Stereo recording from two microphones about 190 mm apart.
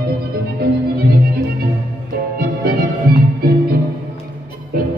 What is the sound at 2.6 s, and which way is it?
Music, 55° right (ahead or behind).